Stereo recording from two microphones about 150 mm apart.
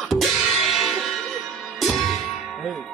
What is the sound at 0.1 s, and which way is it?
Music, centre (ahead or behind).